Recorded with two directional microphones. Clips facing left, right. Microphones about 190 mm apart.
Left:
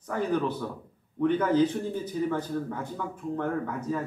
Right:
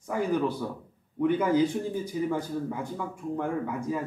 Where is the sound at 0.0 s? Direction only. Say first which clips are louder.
Right 1 dB; 10° right (ahead or behind).